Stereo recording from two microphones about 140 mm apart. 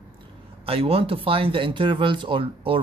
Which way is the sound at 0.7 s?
40° right (ahead or behind).